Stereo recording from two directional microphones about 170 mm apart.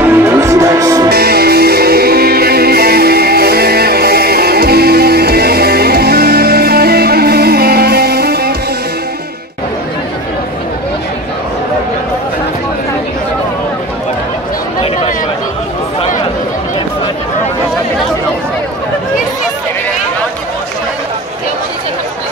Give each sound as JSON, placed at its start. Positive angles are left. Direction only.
{"t": 0.0, "sound": "music", "side_deg": -15}
{"t": 1.1, "sound": "music", "side_deg": -65}